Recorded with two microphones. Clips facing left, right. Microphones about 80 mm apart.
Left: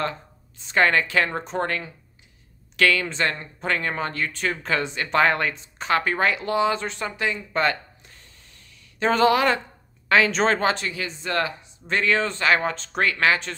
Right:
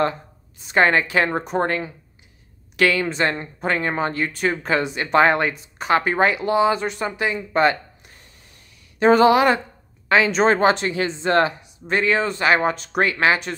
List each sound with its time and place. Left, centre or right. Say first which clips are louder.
0.0 s a woman's voice: right 6 dB; centre
10.5 s speech: right 5 dB; right
11.6 s speech: right 3 dB; centre